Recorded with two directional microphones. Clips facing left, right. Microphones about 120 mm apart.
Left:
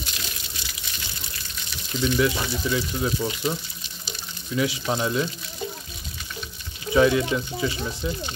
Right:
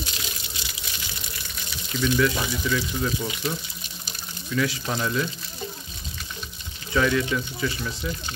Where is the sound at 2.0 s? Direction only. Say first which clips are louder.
Even; 25° left (ahead or behind).